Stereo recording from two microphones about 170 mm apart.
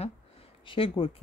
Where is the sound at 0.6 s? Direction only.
30° left (ahead or behind).